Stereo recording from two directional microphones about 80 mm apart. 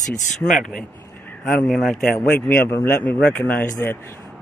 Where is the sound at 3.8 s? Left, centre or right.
Left.